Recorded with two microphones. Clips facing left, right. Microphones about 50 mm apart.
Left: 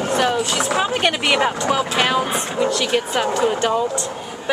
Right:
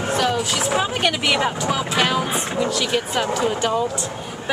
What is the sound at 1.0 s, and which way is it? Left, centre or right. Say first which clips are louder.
A woman's voice: left 2 dB; centre.